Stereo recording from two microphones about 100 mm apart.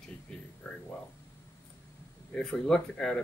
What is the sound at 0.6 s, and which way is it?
Speech, 10° left (ahead or behind).